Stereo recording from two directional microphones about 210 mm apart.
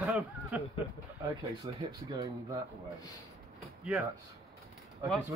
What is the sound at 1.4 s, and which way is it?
Speech, 20° right (ahead or behind).